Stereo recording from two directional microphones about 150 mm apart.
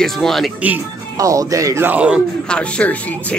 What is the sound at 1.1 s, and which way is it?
Speech, 20° right (ahead or behind).